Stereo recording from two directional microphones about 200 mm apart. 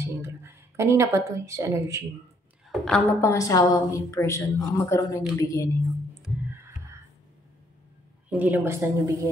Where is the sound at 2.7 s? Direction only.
5° left (ahead or behind).